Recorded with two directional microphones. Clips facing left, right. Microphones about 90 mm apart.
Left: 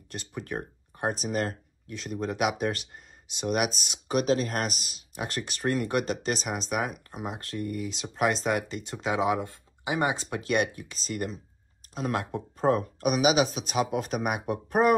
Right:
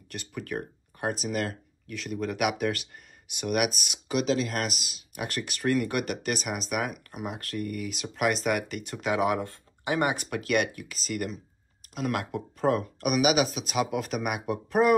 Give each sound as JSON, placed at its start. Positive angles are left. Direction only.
{"t": 0.1, "sound": "speech", "side_deg": 30}
{"t": 4.1, "sound": "speech", "side_deg": 45}